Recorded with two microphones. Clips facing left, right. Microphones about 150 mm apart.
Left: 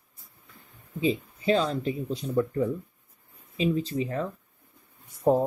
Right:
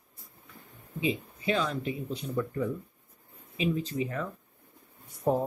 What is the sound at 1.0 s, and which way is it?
Speech, 35° left (ahead or behind).